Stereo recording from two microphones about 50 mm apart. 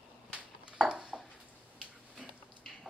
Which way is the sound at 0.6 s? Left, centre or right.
Right.